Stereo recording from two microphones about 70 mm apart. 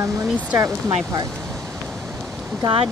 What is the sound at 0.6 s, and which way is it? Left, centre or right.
Speech, right.